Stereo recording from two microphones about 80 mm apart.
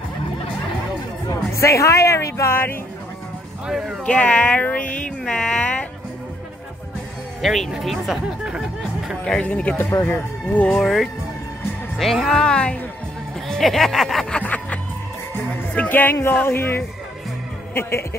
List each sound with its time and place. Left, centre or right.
1.3 s speech: left
3.6 s speech: centre
4.0 s speech: centre
7.4 s speech: centre
9.2 s speech: centre
9.8 s speech: left
10.8 s speech: centre
14.3 s music: centre
15.7 s speech: left